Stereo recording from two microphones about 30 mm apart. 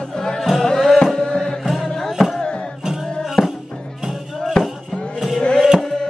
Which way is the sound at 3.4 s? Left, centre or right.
Left.